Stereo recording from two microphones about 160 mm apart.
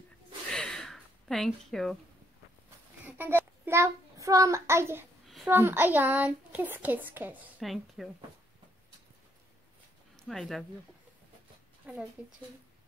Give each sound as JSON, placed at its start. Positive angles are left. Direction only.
{"t": 0.5, "sound": "a sound", "side_deg": 5}
{"t": 3.1, "sound": "a child's voice", "side_deg": -15}
{"t": 10.1, "sound": "speech", "side_deg": 0}
{"t": 11.9, "sound": "a child's voice", "side_deg": -10}